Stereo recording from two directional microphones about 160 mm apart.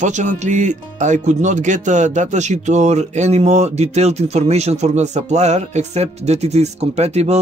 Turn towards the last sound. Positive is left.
turn(degrees=-45)  # may be behind; listen again after turning